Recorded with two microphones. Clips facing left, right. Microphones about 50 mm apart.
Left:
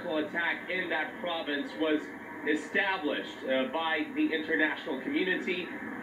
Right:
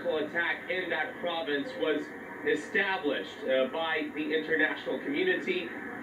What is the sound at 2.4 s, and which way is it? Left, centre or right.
Speech, centre.